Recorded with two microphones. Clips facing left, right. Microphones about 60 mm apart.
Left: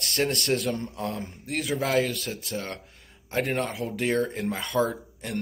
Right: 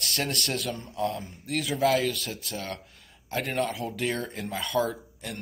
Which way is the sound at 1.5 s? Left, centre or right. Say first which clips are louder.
Right 1 dB; centre.